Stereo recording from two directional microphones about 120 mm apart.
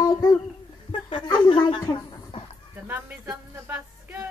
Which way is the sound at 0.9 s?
40° left (ahead or behind).